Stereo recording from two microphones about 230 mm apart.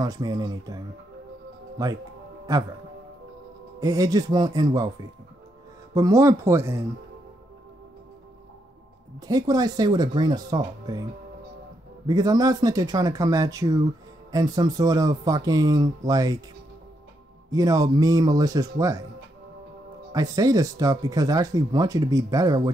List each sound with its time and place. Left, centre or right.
0.0 s speech: centre
3.8 s speech: centre
5.9 s speech: centre
9.2 s speech: centre
12.1 s speech: centre
17.5 s a man's voice: centre
20.1 s speech: centre